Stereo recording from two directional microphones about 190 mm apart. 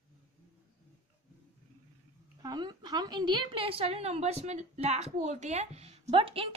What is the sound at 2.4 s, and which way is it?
A woman's voice, 20° right (ahead or behind).